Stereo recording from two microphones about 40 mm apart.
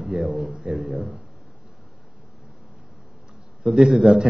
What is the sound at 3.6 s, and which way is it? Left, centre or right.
Speech, centre.